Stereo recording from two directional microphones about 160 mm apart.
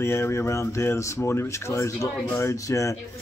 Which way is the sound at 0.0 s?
15° left (ahead or behind).